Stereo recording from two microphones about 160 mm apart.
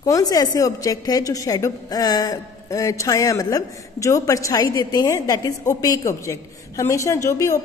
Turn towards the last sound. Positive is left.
turn(degrees=20)  # may be behind; listen again after turning